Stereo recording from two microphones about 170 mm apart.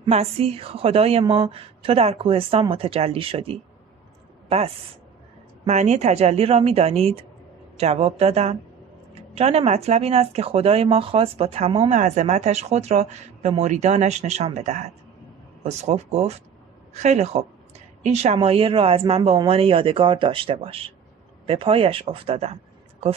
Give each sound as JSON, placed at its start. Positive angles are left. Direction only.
{"t": 0.0, "sound": "speech", "side_deg": -35}